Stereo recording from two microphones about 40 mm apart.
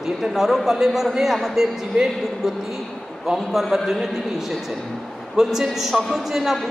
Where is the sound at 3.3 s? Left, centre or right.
Centre.